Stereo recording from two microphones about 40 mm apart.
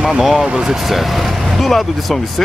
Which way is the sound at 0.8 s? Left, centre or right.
Centre.